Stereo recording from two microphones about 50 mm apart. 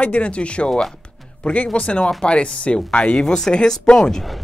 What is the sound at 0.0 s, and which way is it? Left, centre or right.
Speech, left.